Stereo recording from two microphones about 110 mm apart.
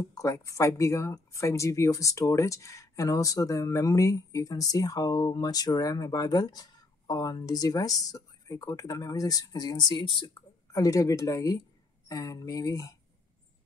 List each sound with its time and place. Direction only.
0.1 s speech: 30° left (ahead or behind)
10.7 s speech: 30° left (ahead or behind)